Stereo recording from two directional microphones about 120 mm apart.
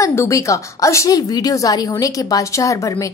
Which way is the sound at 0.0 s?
25° left (ahead or behind).